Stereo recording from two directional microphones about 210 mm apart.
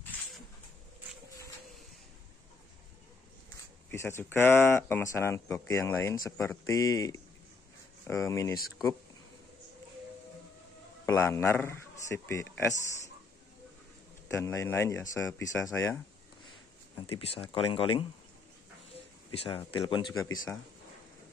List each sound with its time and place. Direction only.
3.9 s speech: 10° left (ahead or behind)
11.1 s speech: 10° left (ahead or behind)
14.3 s speech: 15° left (ahead or behind)
17.3 s speech: 25° left (ahead or behind)
19.3 s speech: 25° left (ahead or behind)